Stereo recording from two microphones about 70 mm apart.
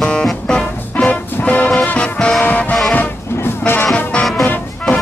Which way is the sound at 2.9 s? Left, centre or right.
Left.